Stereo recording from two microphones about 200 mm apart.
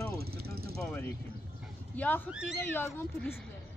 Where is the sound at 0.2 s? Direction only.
50° right (ahead or behind).